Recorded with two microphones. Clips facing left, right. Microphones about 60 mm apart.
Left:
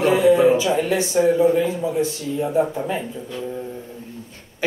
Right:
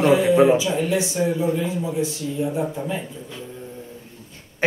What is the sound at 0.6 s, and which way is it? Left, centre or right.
Speech, left.